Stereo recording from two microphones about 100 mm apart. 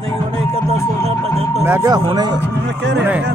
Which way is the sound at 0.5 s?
85° right.